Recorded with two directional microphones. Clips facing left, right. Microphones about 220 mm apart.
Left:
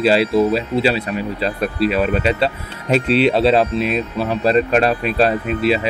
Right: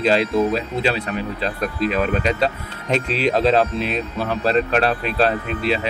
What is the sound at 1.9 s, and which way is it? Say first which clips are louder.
Speech: left 3 dB; 5° left (ahead or behind).